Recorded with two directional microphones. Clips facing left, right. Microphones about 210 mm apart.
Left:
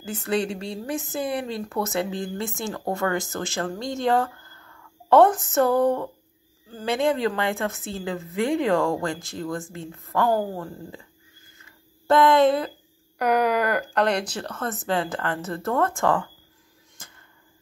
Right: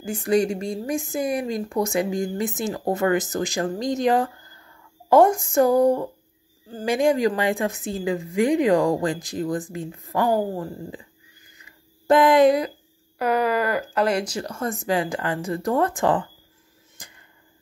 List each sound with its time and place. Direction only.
0.0 s a woman's voice: 10° right (ahead or behind)
10.6 s a woman's voice: 15° right (ahead or behind)
12.1 s a woman's voice: 15° right (ahead or behind)
13.2 s a woman's voice: centre (ahead or behind); by 16.3 s 20° right (ahead or behind)
17.0 s a sound: 15° right (ahead or behind)